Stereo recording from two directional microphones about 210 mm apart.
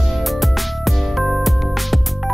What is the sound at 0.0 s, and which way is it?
Music, centre (ahead or behind).